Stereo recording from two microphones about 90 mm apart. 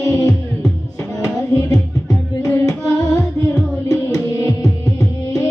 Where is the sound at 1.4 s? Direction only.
40° left (ahead or behind).